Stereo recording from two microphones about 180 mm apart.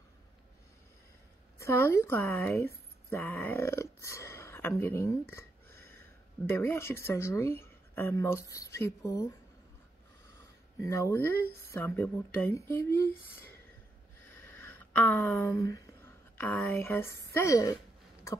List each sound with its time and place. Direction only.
1.6 s speech: 15° left (ahead or behind)
10.8 s speech: 15° left (ahead or behind)
14.2 s a sound: 15° left (ahead or behind)
17.3 s speech: 15° left (ahead or behind)